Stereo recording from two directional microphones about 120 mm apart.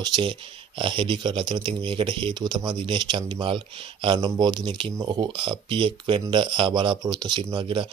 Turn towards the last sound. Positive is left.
turn(degrees=-45)  # may be behind; listen again after turning